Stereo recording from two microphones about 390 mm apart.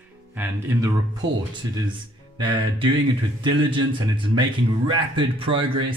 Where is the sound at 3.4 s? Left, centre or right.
Centre.